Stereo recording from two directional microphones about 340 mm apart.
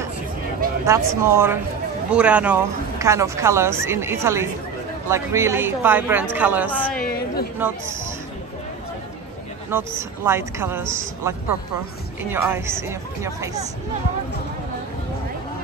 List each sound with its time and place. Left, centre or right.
0.8 s a woman's voice: centre
7.0 s a sound: left
9.7 s speech: centre